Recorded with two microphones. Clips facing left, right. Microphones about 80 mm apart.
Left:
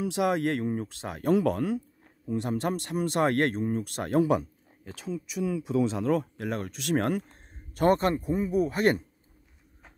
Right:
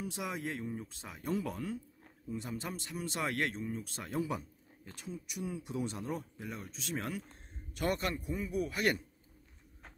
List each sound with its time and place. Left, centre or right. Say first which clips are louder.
0.0 s speech: left 13 dB; left
7.2 s speech: left 1 dB; left